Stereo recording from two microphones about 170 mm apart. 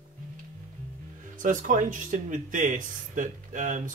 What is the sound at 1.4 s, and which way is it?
Speech, 50° right (ahead or behind).